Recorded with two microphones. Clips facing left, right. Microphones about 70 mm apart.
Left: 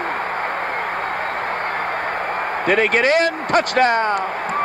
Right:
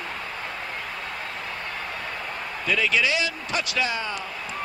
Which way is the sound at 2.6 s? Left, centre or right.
Left.